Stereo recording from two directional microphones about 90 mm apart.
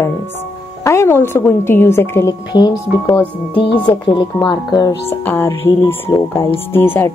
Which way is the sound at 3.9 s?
60° left (ahead or behind).